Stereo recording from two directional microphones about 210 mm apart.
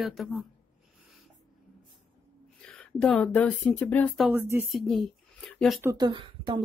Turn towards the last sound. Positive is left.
turn(degrees=-20)  # may be behind; listen again after turning